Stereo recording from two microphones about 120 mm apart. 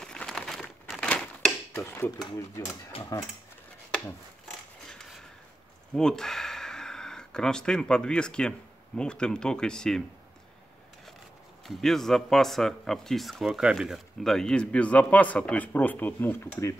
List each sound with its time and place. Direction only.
0.0 s crumpling: 5° left (ahead or behind)
1.0 s typewriter: 10° left (ahead or behind)
1.8 s speech: 20° left (ahead or behind)
4.5 s a sound: 5° left (ahead or behind)
5.9 s speech: 5° left (ahead or behind)
11.6 s a man's voice: centre (ahead or behind); by 16.4 s 15° left (ahead or behind)